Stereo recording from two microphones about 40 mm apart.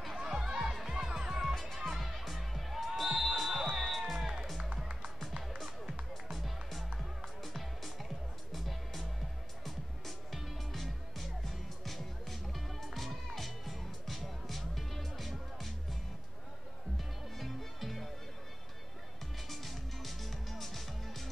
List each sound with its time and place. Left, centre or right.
0.1 s music: centre
1.5 s music: centre
17.4 s music: centre
19.5 s music: centre